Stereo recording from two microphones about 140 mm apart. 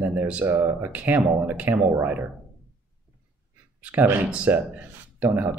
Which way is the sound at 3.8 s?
10° right (ahead or behind).